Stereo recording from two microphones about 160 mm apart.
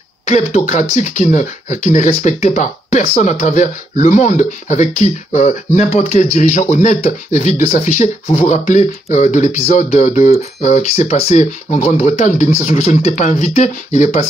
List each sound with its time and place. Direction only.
0.3 s speech: 50° left (ahead or behind)